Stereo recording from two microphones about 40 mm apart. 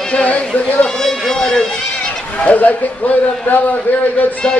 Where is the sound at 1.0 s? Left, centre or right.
Centre.